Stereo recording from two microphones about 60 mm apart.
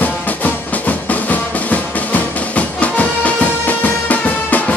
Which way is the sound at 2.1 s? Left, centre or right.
Left.